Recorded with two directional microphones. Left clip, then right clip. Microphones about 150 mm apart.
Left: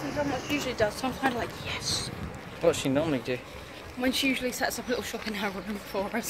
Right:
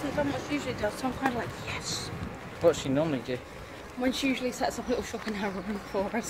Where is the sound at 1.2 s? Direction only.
15° right (ahead or behind).